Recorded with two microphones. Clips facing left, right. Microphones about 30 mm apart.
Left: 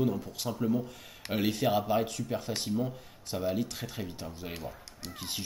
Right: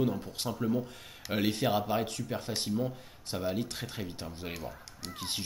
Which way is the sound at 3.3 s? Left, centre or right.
Centre.